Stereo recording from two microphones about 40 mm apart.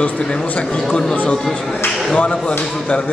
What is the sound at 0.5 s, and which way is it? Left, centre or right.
Speech, left.